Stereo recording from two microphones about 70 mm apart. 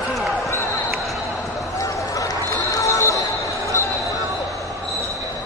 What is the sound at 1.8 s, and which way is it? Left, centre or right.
Basketball bounce, left.